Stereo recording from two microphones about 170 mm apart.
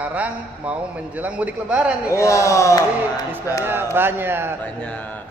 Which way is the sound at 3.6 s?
15° right (ahead or behind).